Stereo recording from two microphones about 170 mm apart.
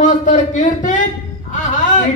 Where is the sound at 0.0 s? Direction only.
45° left (ahead or behind).